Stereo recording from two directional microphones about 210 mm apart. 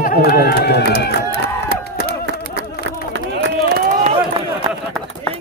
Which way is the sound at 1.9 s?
55° right (ahead or behind).